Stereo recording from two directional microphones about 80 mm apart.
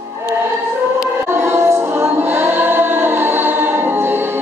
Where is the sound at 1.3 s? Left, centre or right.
Right.